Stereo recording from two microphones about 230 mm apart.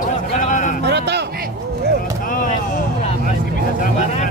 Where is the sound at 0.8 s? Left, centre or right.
Right.